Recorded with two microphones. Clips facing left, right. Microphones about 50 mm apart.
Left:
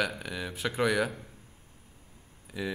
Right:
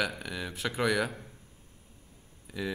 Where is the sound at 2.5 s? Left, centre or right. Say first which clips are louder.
Even; centre.